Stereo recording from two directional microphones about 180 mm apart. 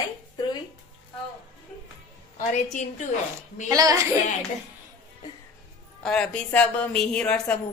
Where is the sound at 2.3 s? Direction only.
40° left (ahead or behind).